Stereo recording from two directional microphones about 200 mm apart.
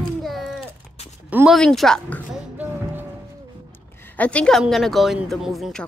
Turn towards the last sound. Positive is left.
turn(degrees=0)  # may be behind; listen again after turning